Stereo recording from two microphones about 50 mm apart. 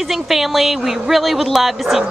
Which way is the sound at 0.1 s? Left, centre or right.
Centre.